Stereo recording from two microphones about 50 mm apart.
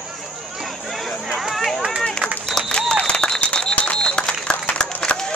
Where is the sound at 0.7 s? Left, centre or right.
Centre.